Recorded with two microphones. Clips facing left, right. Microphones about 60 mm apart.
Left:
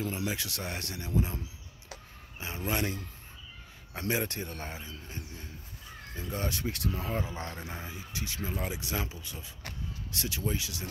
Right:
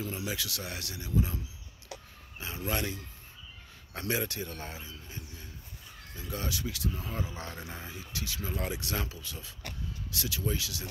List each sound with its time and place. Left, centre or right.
0.0 s speech: left
2.4 s speech: left
4.0 s speech: left
6.8 s speech: left
7.1 s speech: left
7.5 s speech: centre
8.5 s speech: centre